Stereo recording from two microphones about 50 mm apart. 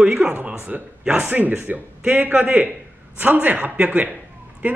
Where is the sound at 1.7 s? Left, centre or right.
Right.